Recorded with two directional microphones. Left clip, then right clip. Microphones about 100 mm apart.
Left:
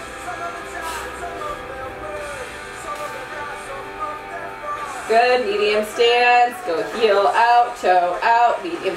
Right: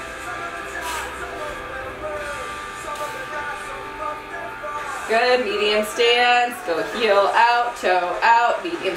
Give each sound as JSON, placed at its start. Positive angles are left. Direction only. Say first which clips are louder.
{"t": 5.1, "sound": "female singing", "louder": "left 2 dB", "side_deg": -5}
{"t": 7.0, "sound": "speech", "louder": "even", "side_deg": -5}